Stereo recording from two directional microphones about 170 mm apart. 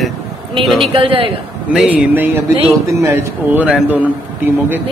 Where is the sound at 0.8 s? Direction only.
30° right (ahead or behind).